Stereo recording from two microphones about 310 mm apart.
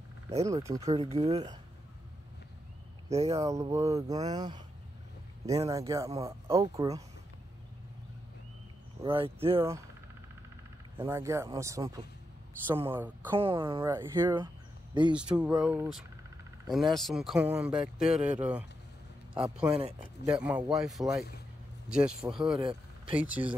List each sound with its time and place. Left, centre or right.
0.3 s speech: centre
3.1 s speech: centre
9.0 s speech: centre
11.0 s speech: centre
13.4 s speech: centre